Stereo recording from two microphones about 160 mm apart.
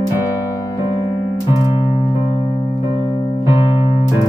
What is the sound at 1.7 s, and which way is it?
Keyboard, 30° left (ahead or behind).